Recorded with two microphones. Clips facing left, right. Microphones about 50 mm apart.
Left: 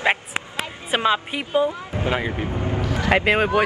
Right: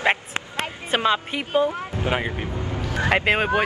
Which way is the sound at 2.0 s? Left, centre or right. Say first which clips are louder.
Left 2 dB; left.